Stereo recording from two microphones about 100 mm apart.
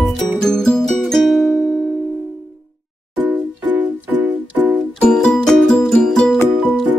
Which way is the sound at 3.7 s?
15° right (ahead or behind).